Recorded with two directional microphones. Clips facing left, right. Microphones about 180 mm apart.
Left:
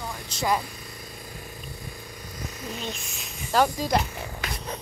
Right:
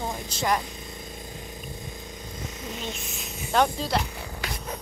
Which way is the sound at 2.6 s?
20° right (ahead or behind).